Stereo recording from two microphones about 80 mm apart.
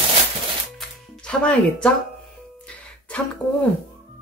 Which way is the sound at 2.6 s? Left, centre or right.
Centre.